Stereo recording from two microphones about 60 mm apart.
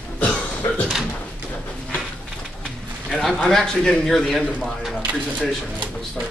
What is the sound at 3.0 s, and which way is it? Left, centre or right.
A man's voice, centre.